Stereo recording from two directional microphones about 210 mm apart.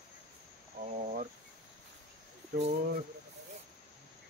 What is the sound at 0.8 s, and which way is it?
Cricket, 45° right (ahead or behind).